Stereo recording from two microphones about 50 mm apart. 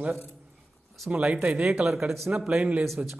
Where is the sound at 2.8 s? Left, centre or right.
Centre.